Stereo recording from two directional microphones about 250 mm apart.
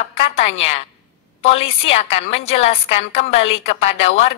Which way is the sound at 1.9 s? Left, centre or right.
Left.